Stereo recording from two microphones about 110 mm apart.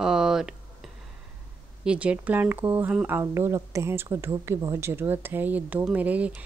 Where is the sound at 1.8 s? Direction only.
10° right (ahead or behind).